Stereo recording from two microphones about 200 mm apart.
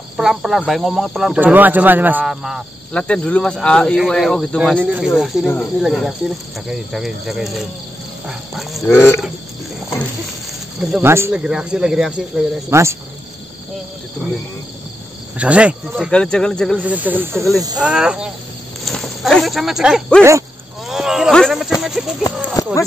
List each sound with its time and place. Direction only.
0.2 s speech: centre (ahead or behind)
8.3 s a sound: centre (ahead or behind)
8.9 s speech: 15° left (ahead or behind)
10.8 s speech: 10° right (ahead or behind)
12.6 s speech: 15° right (ahead or behind)
15.3 s speech: 5° right (ahead or behind)
16.7 s speech: 10° right (ahead or behind)
20.9 s a sound: 5° right (ahead or behind)
21.8 s speech: centre (ahead or behind)
22.6 s a sound: 15° left (ahead or behind)